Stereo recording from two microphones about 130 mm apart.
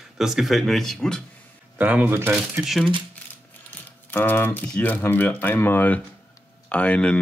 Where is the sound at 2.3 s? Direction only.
5° right (ahead or behind).